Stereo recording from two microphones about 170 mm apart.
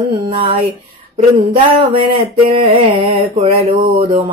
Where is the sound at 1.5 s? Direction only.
30° right (ahead or behind).